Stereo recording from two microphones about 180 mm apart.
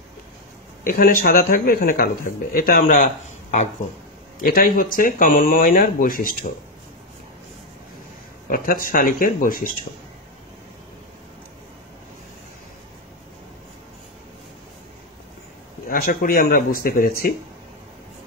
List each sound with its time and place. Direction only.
0.8 s speech: 50° left (ahead or behind)
4.4 s speech: 50° left (ahead or behind)
8.5 s speech: 55° left (ahead or behind)
15.9 s speech: 55° left (ahead or behind)